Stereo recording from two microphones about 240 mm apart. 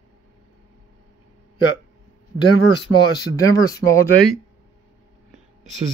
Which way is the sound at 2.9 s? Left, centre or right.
Centre.